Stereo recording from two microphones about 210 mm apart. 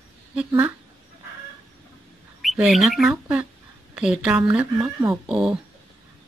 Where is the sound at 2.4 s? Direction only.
Centre (ahead or behind).